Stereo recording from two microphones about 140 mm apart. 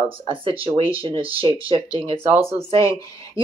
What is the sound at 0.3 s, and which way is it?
Speech, 40° right (ahead or behind).